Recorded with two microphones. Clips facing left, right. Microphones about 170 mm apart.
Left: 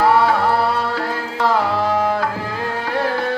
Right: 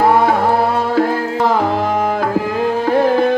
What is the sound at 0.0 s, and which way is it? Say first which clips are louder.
Music: right 2 dB; 50° right (ahead or behind).